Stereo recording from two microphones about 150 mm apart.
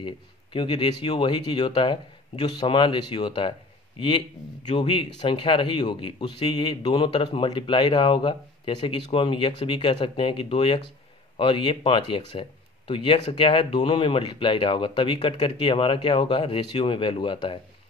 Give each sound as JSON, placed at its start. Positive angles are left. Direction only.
{"t": 0.0, "sound": "speech", "side_deg": 35}